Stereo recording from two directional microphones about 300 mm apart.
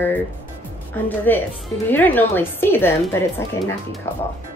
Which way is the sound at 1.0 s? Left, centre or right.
Centre.